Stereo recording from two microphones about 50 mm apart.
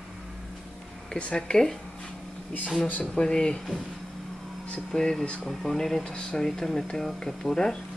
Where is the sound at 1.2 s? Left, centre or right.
Left.